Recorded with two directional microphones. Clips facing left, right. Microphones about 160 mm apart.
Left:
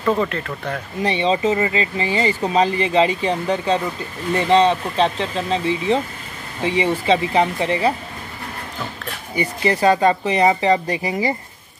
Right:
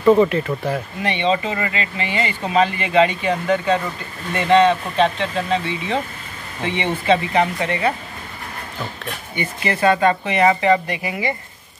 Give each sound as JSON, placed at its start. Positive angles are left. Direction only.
{"t": 0.0, "sound": "speech", "side_deg": -10}
{"t": 1.1, "sound": "speech", "side_deg": 30}
{"t": 9.3, "sound": "speech", "side_deg": 30}